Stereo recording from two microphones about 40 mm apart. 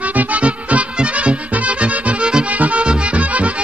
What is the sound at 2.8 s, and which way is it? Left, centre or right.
Music, right.